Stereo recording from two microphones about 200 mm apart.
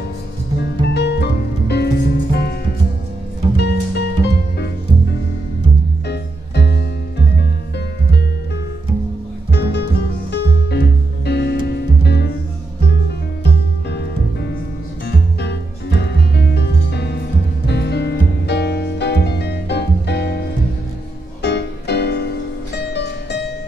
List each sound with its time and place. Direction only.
0.6 s music: 55° left (ahead or behind)
3.5 s music: 55° left (ahead or behind)
6.0 s music: 55° left (ahead or behind)
9.5 s music: 55° left (ahead or behind)
13.4 s music: 55° left (ahead or behind)